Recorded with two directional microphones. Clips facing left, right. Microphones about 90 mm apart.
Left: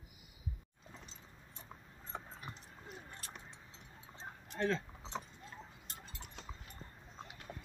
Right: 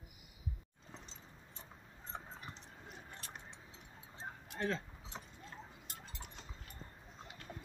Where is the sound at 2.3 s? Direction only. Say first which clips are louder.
Left 1 dB; 5° left (ahead or behind).